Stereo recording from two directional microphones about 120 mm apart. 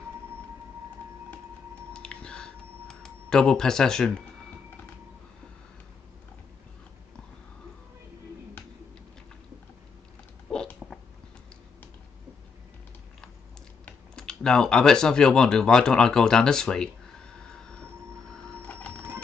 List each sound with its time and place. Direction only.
2.0 s computer keyboard: 5° left (ahead or behind)
10.5 s a sound: 5° left (ahead or behind)
13.8 s speech: 5° left (ahead or behind)
17.4 s train: 5° left (ahead or behind)
18.3 s printer: 10° left (ahead or behind)